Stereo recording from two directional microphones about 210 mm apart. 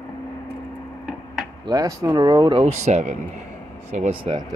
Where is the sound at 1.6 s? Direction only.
15° right (ahead or behind).